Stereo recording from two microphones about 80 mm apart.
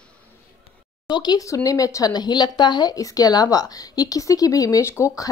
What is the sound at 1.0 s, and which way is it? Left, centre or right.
Speech, left.